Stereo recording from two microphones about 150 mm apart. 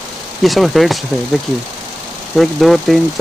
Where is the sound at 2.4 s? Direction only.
Centre (ahead or behind).